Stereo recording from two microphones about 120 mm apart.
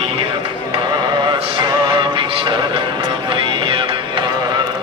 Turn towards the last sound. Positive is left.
turn(degrees=-45)  # may be behind; listen again after turning